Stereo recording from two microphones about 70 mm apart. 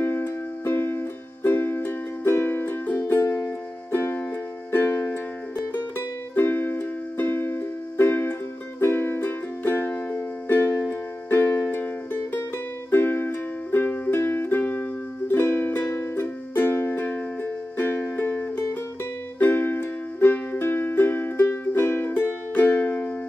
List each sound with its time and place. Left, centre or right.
0.0 s music: left